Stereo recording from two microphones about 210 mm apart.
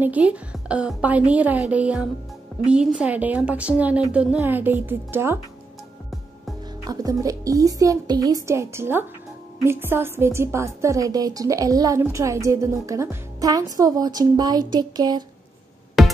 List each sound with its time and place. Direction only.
0.0 s a woman's voice: 5° right (ahead or behind)
6.9 s a woman's voice: 15° right (ahead or behind)
14.7 s a sound: 20° right (ahead or behind)
16.0 s music: centre (ahead or behind)